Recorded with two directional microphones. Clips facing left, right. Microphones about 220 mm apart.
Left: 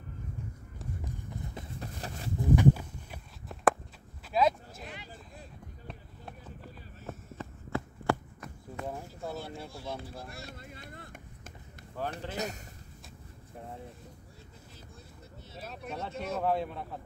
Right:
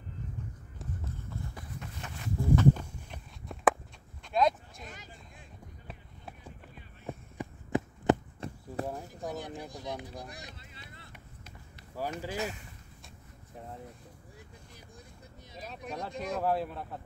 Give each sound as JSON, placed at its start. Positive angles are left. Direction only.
{"t": 1.0, "sound": "run", "side_deg": 15}
{"t": 1.8, "sound": "a sound", "side_deg": 35}
{"t": 2.5, "sound": "walk", "side_deg": 10}
{"t": 4.2, "sound": "a sound", "side_deg": 5}
{"t": 4.8, "sound": "a sound", "side_deg": -45}
{"t": 5.9, "sound": "run", "side_deg": -5}
{"t": 7.1, "sound": "heart sounds", "side_deg": -15}
{"t": 8.8, "sound": "a sound", "side_deg": -35}
{"t": 9.1, "sound": "speech", "side_deg": -15}
{"t": 10.5, "sound": "vehicle", "side_deg": 50}
{"t": 12.0, "sound": "speech", "side_deg": -10}
{"t": 12.4, "sound": "speech", "side_deg": 40}
{"t": 15.6, "sound": "speech", "side_deg": 5}